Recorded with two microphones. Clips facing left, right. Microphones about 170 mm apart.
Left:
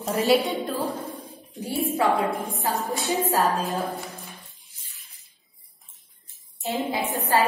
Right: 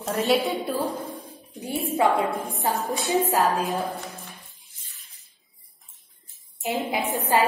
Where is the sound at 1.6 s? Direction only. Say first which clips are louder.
Even; 20° right (ahead or behind).